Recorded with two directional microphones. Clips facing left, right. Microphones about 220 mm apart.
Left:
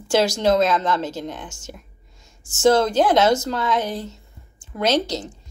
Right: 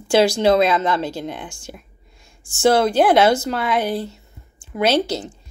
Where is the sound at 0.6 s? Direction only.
10° right (ahead or behind).